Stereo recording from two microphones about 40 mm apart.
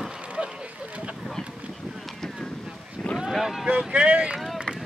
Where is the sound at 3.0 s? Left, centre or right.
Centre.